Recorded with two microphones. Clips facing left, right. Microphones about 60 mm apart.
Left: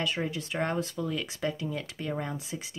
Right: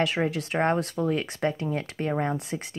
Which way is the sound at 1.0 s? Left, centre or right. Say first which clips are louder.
Right 6 dB; right.